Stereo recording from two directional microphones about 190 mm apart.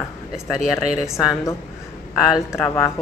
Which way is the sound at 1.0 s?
Centre (ahead or behind).